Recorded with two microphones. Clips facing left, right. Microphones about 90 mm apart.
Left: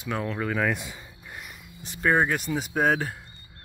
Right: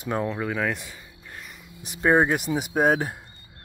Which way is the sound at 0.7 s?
15° left (ahead or behind).